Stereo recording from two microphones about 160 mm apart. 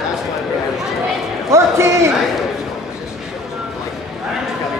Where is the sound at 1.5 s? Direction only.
20° right (ahead or behind).